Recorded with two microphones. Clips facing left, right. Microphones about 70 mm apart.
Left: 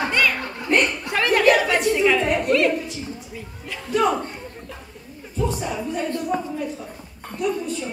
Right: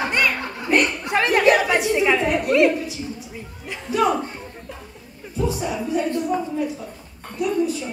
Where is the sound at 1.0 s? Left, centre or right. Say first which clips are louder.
Even; centre.